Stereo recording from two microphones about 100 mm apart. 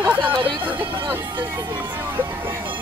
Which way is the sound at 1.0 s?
20° right (ahead or behind).